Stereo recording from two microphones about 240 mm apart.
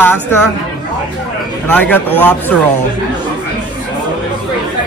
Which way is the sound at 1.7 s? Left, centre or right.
Centre.